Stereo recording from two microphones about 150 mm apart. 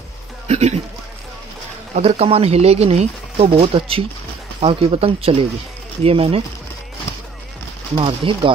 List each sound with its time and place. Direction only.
0.5 s a sound: 45° right (ahead or behind)
2.0 s speech: 40° right (ahead or behind)
7.9 s speech: 35° right (ahead or behind)